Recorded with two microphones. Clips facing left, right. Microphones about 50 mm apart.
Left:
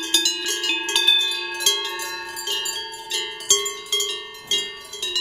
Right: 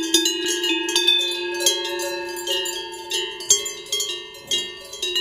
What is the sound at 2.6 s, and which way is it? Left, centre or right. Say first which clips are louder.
Wind chime: right 2 dB; centre.